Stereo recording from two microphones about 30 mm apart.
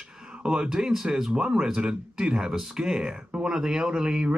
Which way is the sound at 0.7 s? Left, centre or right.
Centre.